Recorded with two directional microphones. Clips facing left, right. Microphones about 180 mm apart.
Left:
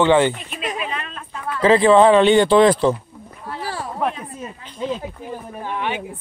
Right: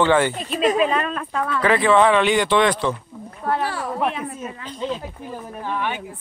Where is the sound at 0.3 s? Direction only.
35° right (ahead or behind).